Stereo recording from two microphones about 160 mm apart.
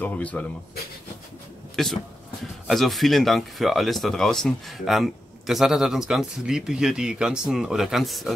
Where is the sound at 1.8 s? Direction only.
5° left (ahead or behind).